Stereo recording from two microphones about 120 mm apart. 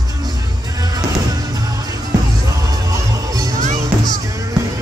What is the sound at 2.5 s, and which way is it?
Music, 30° right (ahead or behind).